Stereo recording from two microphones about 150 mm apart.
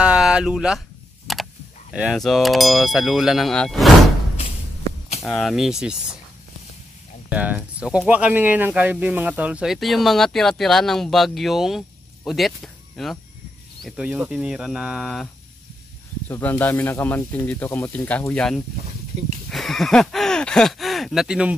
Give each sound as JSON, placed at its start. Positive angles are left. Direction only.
{"t": 0.0, "sound": "a sound", "side_deg": -5}
{"t": 2.1, "sound": "speech", "side_deg": 0}
{"t": 5.2, "sound": "speech", "side_deg": 0}
{"t": 7.2, "sound": "speech", "side_deg": -10}
{"t": 13.8, "sound": "speech", "side_deg": -10}
{"t": 16.3, "sound": "speech", "side_deg": 10}